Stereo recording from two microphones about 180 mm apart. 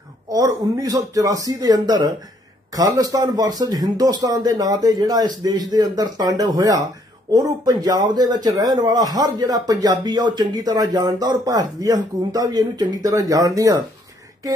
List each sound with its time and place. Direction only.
0.3 s speech: 20° right (ahead or behind)